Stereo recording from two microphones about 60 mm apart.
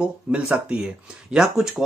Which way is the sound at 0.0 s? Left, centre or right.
Centre.